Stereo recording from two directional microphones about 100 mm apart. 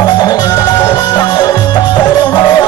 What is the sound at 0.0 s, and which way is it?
Music, 45° left (ahead or behind).